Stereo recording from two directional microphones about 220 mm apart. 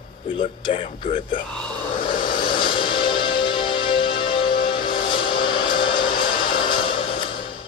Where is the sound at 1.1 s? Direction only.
20° left (ahead or behind).